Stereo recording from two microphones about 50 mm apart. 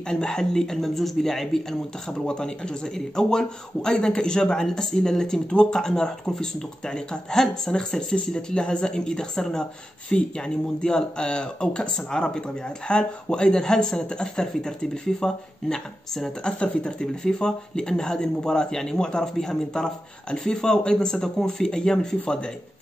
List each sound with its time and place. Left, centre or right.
0.1 s a man's voice: centre